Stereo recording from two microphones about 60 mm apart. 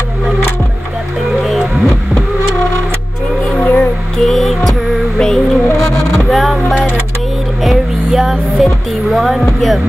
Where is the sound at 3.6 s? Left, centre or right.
Left.